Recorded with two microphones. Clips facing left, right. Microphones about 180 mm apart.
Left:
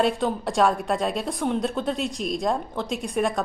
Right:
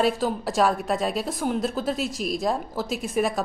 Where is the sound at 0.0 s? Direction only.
Centre (ahead or behind).